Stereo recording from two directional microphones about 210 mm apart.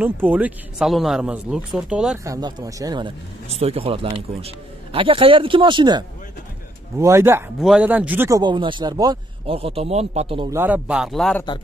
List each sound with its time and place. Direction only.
0.0 s speech: 10° right (ahead or behind)
2.2 s speech: 15° right (ahead or behind)
10.5 s speech: 10° right (ahead or behind)